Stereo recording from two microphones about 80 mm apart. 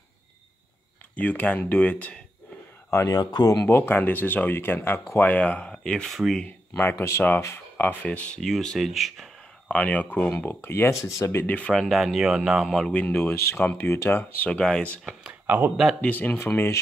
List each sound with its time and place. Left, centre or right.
1.1 s speech: left
2.9 s speech: left
3.2 s speech: left
3.6 s speech: left; by 6.4 s centre
6.8 s speech: left
8.4 s speech: centre
9.7 s speech: centre; by 11.4 s left
11.4 s speech: centre
11.7 s speech: centre
12.9 s speech: centre
14.5 s speech: centre
15.4 s speech: right
16.0 s speech: left